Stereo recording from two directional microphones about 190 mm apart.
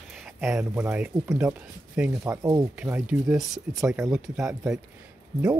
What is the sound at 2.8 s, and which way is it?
Speech, 5° right (ahead or behind).